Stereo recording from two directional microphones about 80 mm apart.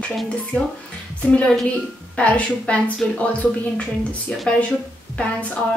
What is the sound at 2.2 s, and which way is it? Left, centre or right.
Speech, centre.